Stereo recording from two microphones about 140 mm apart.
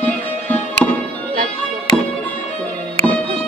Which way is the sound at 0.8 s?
5° left (ahead or behind).